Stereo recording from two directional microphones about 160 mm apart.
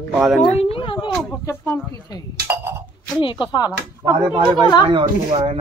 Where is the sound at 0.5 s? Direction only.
35° left (ahead or behind).